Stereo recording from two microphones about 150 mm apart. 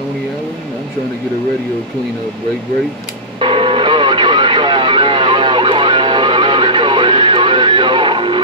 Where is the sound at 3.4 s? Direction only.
35° right (ahead or behind).